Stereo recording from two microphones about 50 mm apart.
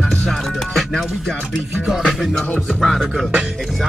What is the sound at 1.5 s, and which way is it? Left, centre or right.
Music, centre.